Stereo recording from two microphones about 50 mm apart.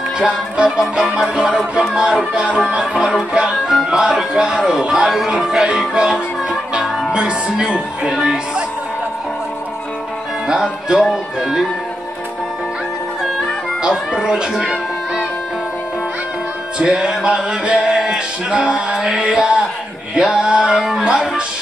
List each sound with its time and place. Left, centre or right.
0.2 s music: centre
1.2 s speech: centre
1.5 s speech: centre
2.3 s music: centre
2.8 s speech: centre
10.4 s speech: centre
11.0 s speech: centre
13.8 s music: centre
14.5 s music: centre
16.7 s music: centre
18.9 s speech: centre
20.7 s speech: centre
21.0 s speech: centre